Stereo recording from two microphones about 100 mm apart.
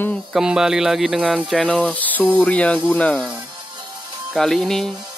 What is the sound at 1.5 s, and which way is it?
A man's voice, 10° left (ahead or behind).